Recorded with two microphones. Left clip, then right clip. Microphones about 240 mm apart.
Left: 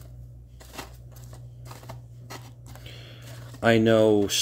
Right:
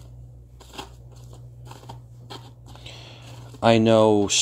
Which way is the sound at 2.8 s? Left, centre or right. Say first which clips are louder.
Right 4 dB; centre.